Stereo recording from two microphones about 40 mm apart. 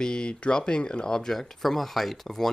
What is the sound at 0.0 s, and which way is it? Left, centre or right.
Speech, left.